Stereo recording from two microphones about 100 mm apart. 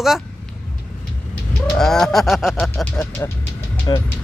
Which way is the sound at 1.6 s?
5° left (ahead or behind).